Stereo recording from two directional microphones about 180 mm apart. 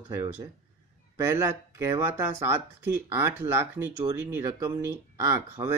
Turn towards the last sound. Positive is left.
turn(degrees=-20)  # may be behind; listen again after turning